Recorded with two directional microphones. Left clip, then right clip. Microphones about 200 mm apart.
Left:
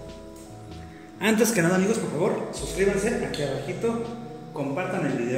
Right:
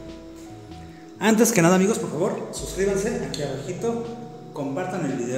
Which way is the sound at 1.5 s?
45° right (ahead or behind).